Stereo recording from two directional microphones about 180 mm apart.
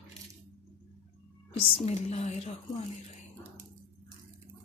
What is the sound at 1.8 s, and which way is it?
A woman's voice, 35° left (ahead or behind).